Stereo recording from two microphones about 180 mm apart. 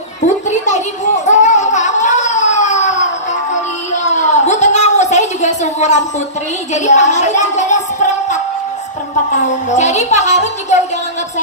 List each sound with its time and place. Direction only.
0.3 s a sound: 40° left (ahead or behind)
6.7 s speech: 40° left (ahead or behind)
9.8 s speech: 40° left (ahead or behind)